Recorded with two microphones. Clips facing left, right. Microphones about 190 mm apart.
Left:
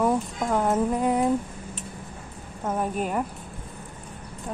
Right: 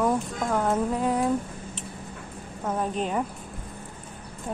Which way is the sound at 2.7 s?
10° left (ahead or behind).